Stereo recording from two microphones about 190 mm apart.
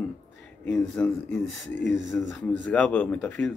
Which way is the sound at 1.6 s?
70° left (ahead or behind).